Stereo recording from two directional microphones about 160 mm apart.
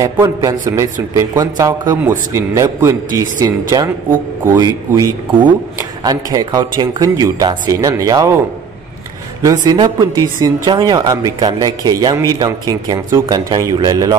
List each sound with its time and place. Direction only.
0.0 s a woman's voice: 20° right (ahead or behind)
9.4 s a woman's voice: 20° right (ahead or behind)